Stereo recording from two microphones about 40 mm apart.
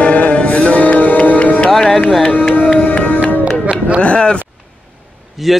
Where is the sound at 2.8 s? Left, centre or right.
Left.